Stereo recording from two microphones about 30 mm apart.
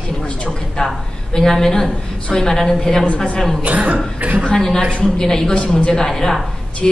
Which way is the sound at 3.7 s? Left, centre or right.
Right.